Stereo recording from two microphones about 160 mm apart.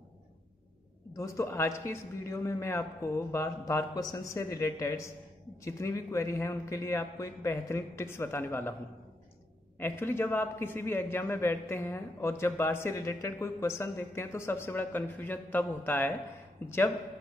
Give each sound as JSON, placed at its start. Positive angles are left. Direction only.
{"t": 1.1, "sound": "a man's voice", "side_deg": 20}
{"t": 9.8, "sound": "a man's voice", "side_deg": 15}